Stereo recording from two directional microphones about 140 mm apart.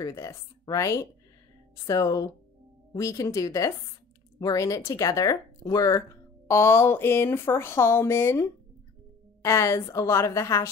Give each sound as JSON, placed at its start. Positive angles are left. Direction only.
{"t": 0.0, "sound": "speech", "side_deg": 20}